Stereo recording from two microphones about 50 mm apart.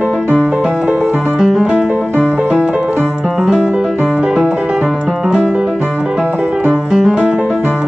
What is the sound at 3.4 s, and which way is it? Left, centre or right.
Music, centre.